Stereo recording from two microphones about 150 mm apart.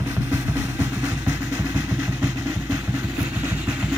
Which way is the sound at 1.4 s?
25° right (ahead or behind).